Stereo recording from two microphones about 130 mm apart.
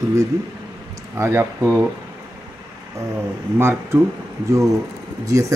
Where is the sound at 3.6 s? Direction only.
20° right (ahead or behind).